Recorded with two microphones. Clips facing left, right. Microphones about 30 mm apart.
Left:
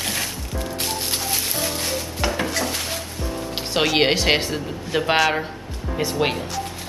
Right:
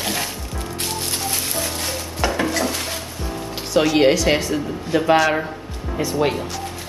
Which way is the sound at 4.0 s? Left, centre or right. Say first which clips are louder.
Right 2 dB; left.